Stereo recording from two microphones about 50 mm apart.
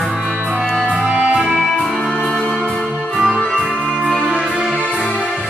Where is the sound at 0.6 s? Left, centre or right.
Centre.